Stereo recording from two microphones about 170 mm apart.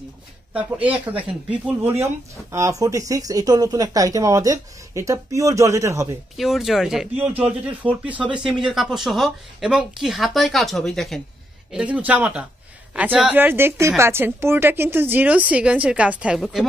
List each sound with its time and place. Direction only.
0.5 s a woman's voice: 10° right (ahead or behind)
6.3 s a woman's voice: centre (ahead or behind)